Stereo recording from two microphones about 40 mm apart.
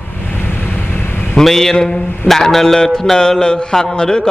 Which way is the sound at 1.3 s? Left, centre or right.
Centre.